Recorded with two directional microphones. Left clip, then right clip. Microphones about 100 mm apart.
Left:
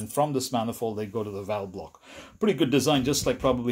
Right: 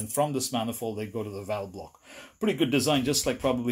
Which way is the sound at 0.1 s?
25° left (ahead or behind).